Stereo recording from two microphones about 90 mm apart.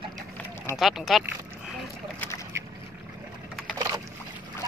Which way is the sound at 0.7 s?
5° right (ahead or behind).